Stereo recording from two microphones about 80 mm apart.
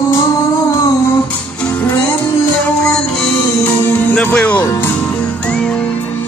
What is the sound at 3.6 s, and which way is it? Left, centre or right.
Music, centre.